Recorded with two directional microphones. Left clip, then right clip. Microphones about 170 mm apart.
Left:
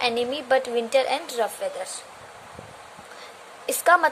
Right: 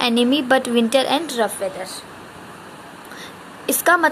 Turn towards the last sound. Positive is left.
turn(degrees=15)  # may be behind; listen again after turning